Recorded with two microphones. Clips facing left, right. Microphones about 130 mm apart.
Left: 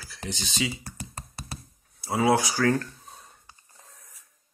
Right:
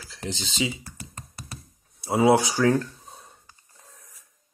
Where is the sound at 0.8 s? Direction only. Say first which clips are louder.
Left 2 dB; 30° left (ahead or behind).